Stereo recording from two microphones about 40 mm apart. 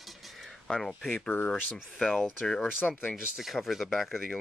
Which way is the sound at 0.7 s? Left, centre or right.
Centre.